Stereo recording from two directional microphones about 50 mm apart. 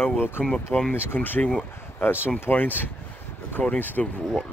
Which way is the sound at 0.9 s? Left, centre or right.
Left.